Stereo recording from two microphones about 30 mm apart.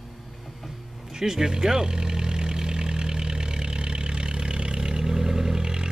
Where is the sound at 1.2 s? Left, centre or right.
Right.